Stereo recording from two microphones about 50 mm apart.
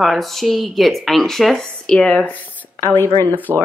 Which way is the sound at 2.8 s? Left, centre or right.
Left.